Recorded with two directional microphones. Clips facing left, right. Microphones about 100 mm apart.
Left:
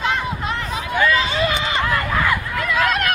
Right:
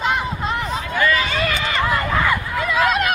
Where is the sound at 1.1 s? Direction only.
20° left (ahead or behind).